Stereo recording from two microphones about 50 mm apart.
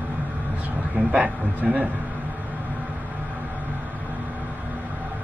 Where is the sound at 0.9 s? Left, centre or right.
Right.